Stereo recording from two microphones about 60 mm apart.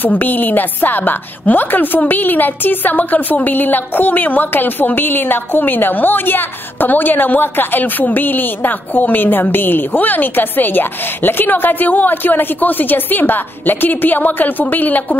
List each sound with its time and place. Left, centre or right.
0.0 s a woman's voice: left